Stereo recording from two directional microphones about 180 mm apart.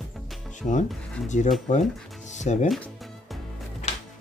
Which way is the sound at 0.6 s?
45° left (ahead or behind).